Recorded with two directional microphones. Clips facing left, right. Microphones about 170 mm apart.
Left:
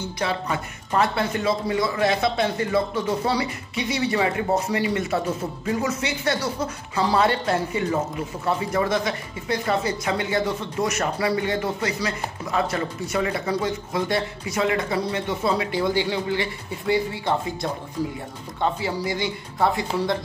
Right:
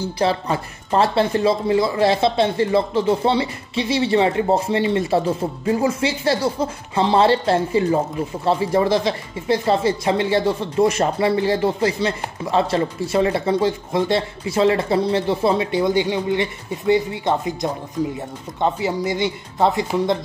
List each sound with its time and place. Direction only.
0.0 s speech: 35° right (ahead or behind)
18.0 s speech: 10° left (ahead or behind)
18.6 s speech: 20° right (ahead or behind)